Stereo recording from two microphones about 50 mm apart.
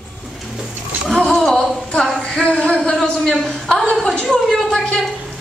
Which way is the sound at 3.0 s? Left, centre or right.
Centre.